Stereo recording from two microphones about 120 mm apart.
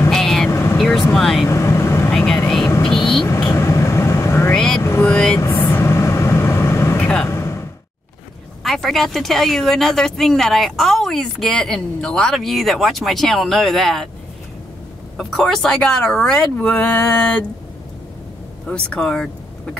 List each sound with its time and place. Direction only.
0.1 s vehicle: 5° left (ahead or behind)
0.5 s vehicle: 20° left (ahead or behind)
0.7 s vehicle: centre (ahead or behind)
1.1 s speech: centre (ahead or behind)
1.5 s vehicle: 25° left (ahead or behind)
2.0 s vehicle: 5° left (ahead or behind)
3.3 s vehicle: 20° left (ahead or behind)
4.6 s vehicle: 5° left (ahead or behind); by 7.0 s 20° left (ahead or behind)
7.0 s vehicle: 10° left (ahead or behind)
7.2 s a sound: 20° left (ahead or behind)
8.6 s speech: centre (ahead or behind)
15.1 s speech: 5° left (ahead or behind)
18.7 s speech: 10° left (ahead or behind)